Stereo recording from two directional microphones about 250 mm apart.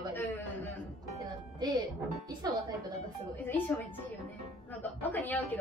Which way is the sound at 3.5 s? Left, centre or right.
Centre.